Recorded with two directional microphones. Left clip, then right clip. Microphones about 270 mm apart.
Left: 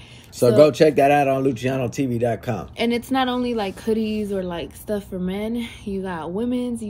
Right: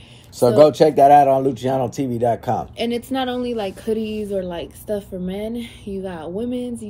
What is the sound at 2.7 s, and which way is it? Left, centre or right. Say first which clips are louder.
Speech: left 1 dB; centre.